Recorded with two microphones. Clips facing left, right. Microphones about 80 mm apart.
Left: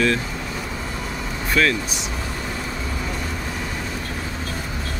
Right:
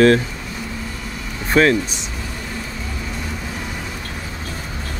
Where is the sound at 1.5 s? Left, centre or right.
Right.